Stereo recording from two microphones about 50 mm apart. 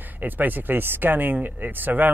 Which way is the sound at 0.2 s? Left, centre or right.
Right.